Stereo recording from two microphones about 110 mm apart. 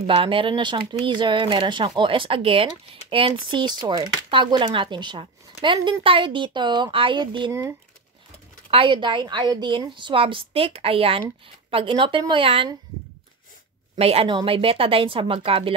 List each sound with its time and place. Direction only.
0.0 s speech: 55° right (ahead or behind)
8.6 s speech: 50° right (ahead or behind)
13.9 s speech: 65° right (ahead or behind)